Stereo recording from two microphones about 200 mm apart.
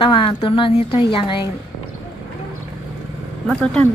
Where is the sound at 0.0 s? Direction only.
25° left (ahead or behind).